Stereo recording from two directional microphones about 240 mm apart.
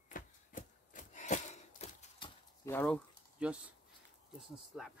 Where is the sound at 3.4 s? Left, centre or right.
Centre.